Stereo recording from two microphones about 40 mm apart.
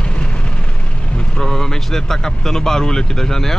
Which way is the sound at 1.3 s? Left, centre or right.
Centre.